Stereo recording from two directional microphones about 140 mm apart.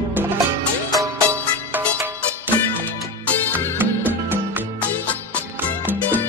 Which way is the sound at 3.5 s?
15° right (ahead or behind).